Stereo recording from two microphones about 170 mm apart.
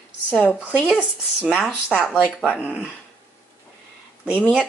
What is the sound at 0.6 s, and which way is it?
Speech, 5° right (ahead or behind).